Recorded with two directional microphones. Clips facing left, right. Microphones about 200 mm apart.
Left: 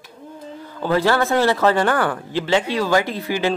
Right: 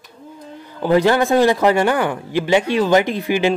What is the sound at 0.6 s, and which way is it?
Speech, 15° right (ahead or behind).